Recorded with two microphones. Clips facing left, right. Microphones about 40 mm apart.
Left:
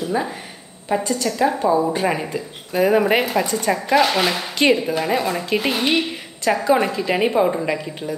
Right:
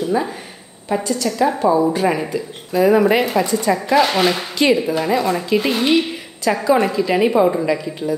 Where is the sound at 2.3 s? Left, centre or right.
Left.